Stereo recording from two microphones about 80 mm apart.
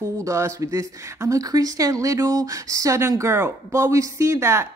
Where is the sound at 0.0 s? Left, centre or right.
Right.